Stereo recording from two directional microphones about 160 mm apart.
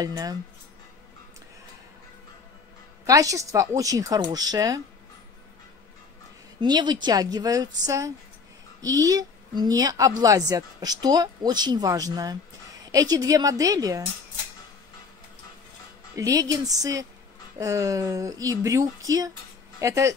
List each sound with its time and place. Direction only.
0.0 s speech: 25° right (ahead or behind)
3.1 s speech: 20° right (ahead or behind)
6.6 s speech: 25° right (ahead or behind)
16.2 s speech: 20° right (ahead or behind)